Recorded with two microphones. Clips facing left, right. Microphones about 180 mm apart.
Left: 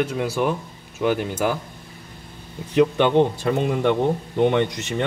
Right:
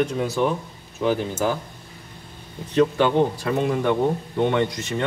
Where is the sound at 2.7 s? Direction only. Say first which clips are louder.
Left 2 dB; 20° left (ahead or behind).